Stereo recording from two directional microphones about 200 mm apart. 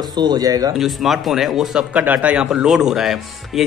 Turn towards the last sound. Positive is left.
turn(degrees=0)  # may be behind; listen again after turning